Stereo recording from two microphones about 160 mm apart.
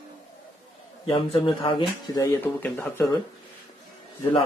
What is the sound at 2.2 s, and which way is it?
Speech, 15° left (ahead or behind).